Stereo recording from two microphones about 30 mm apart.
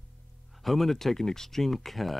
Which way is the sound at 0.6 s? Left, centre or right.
Centre.